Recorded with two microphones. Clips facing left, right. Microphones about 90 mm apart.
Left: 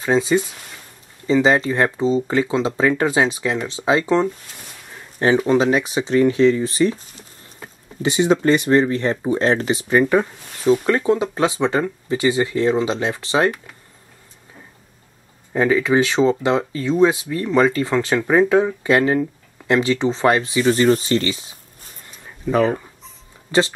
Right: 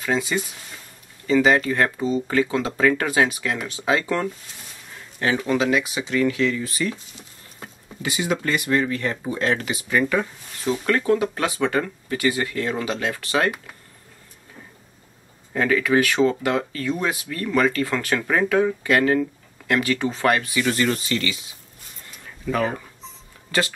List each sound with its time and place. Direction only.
0.0 s speech: 25° left (ahead or behind)
5.5 s speech: 35° left (ahead or behind)
8.0 s speech: 30° left (ahead or behind)
15.5 s speech: 20° left (ahead or behind)
22.0 s a sound: 25° left (ahead or behind)
23.5 s speech: 25° left (ahead or behind)